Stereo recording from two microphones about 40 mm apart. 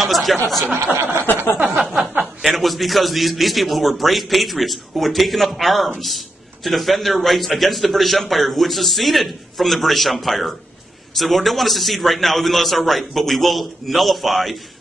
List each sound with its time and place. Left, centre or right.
0.0 s speech: centre
1.2 s a sound: left
1.8 s a man's voice: centre